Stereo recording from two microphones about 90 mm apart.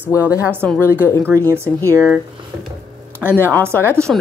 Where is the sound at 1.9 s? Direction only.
30° right (ahead or behind).